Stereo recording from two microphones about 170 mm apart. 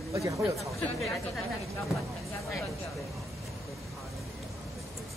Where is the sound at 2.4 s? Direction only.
Centre (ahead or behind).